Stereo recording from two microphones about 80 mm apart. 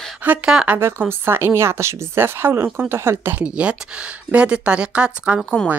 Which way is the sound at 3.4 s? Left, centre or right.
Centre.